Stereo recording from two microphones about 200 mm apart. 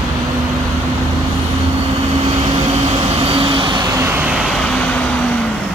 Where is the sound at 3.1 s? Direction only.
30° right (ahead or behind); by 4.4 s 5° right (ahead or behind).